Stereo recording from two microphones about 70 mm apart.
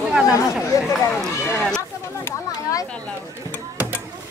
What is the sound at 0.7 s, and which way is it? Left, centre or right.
Speech, left.